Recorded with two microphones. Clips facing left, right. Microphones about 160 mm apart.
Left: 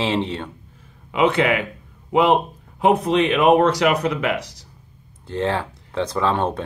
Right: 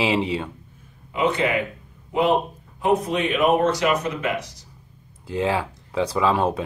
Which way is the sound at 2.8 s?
75° left (ahead or behind).